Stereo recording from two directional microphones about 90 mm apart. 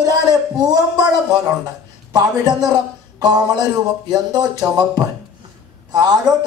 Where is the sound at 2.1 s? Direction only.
50° right (ahead or behind).